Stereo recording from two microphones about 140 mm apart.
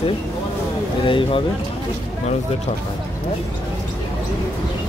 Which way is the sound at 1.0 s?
40° left (ahead or behind).